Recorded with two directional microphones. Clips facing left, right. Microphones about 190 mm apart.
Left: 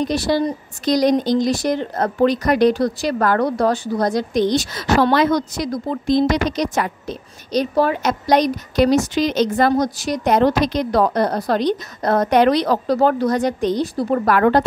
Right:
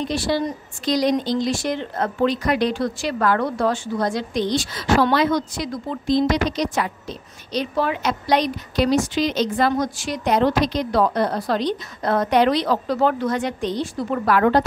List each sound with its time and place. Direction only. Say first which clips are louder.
0.0 s a woman's voice: left 4 dB; 40° left (ahead or behind)